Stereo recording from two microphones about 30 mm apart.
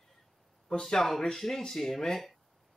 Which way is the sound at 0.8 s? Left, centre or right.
Left.